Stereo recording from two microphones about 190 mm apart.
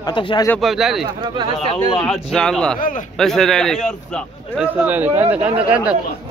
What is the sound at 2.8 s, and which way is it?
Speech, 45° left (ahead or behind).